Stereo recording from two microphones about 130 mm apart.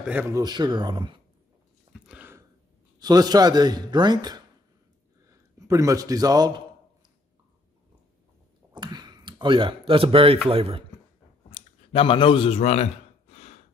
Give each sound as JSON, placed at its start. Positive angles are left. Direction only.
{"t": 0.0, "sound": "speech", "side_deg": -10}
{"t": 0.3, "sound": "speech", "side_deg": -35}
{"t": 1.9, "sound": "a sound", "side_deg": -10}
{"t": 3.0, "sound": "a man's voice", "side_deg": -30}
{"t": 8.7, "sound": "a sound", "side_deg": -35}
{"t": 10.5, "sound": "speech", "side_deg": -45}
{"t": 11.5, "sound": "gasp", "side_deg": 45}